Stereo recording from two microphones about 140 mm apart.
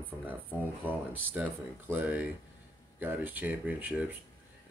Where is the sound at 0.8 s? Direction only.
15° right (ahead or behind).